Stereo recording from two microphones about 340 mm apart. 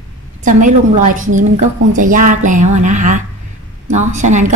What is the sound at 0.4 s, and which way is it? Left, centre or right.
A woman's voice, right.